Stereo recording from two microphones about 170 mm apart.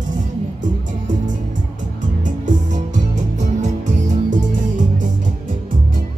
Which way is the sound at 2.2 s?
50° right (ahead or behind).